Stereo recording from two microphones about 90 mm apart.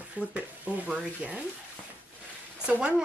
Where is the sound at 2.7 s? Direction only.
15° right (ahead or behind).